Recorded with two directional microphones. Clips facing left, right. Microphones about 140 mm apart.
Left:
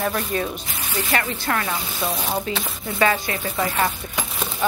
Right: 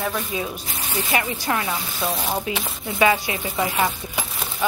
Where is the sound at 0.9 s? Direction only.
15° right (ahead or behind).